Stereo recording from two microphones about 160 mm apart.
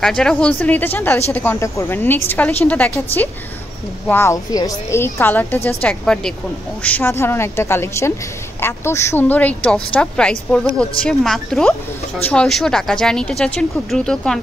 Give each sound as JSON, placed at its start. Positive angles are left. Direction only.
{"t": 0.0, "sound": "a woman's voice", "side_deg": 5}
{"t": 4.1, "sound": "a woman's voice", "side_deg": 15}